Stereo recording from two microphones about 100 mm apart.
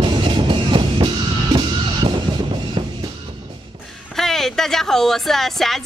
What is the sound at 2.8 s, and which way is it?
Music, 55° right (ahead or behind).